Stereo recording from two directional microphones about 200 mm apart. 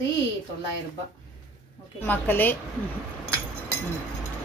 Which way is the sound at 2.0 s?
10° left (ahead or behind).